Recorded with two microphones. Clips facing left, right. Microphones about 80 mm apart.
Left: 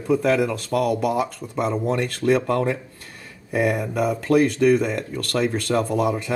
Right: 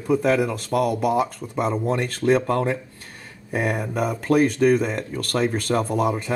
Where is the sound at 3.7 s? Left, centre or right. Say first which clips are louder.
Left 2 dB; right.